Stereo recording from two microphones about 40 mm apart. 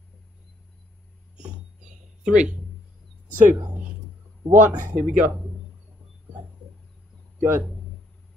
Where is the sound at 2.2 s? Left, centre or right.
Right.